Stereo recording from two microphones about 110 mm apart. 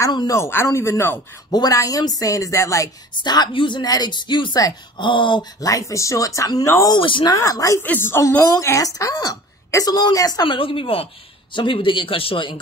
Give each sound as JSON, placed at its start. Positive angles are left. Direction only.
{"t": 0.0, "sound": "a woman's voice", "side_deg": 35}
{"t": 0.4, "sound": "speech", "side_deg": 20}
{"t": 1.5, "sound": "a woman's voice", "side_deg": 35}
{"t": 3.2, "sound": "speech", "side_deg": 40}
{"t": 5.6, "sound": "a woman's voice", "side_deg": 30}
{"t": 7.0, "sound": "speech", "side_deg": 50}
{"t": 7.3, "sound": "a woman's voice", "side_deg": 30}
{"t": 7.8, "sound": "a woman's voice", "side_deg": 20}